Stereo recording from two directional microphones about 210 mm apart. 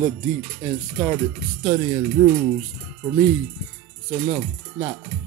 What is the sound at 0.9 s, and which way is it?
Speech, 15° right (ahead or behind).